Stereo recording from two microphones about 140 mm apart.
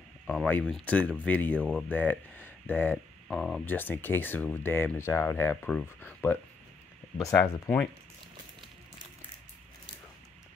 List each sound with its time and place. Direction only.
0.3 s speech: 5° left (ahead or behind)